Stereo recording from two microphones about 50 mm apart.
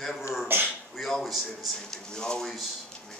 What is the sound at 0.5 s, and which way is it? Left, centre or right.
Speech, right.